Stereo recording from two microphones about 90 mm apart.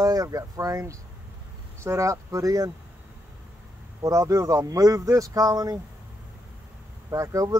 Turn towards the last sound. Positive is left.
turn(degrees=-40)  # may be behind; listen again after turning